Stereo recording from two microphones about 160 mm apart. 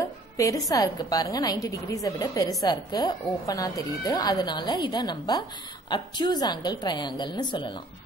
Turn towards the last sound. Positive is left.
turn(degrees=30)  # may be behind; listen again after turning